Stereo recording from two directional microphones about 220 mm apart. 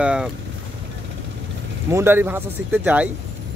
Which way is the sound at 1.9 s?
10° right (ahead or behind).